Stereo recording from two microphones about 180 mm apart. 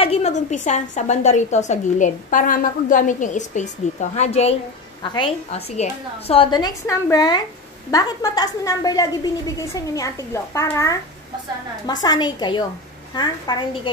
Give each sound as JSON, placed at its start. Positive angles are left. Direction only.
{"t": 0.0, "sound": "a woman's voice", "side_deg": 35}